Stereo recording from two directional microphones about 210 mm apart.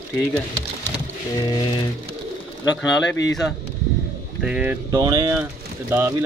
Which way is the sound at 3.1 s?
60° left (ahead or behind).